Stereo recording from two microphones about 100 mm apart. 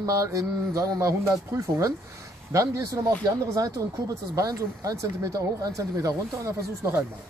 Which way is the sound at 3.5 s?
35° right (ahead or behind).